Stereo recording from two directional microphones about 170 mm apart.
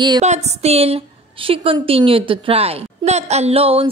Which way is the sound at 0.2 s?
40° right (ahead or behind).